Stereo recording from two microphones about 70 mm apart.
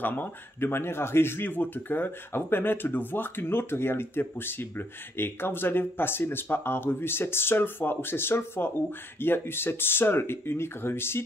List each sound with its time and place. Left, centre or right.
0.0 s speech: left